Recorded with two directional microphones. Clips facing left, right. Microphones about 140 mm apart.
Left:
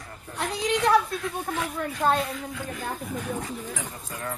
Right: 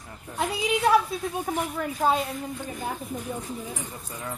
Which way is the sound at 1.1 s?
90° left.